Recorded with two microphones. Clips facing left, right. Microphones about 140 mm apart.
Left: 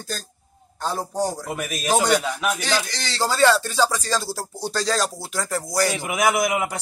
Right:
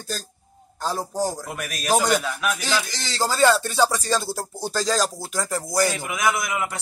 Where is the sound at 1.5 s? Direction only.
15° left (ahead or behind).